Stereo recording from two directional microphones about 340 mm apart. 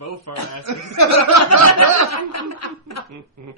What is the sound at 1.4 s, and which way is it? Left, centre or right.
Snicker, left.